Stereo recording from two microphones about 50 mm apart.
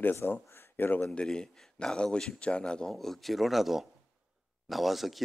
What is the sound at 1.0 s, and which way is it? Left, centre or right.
Speech, centre.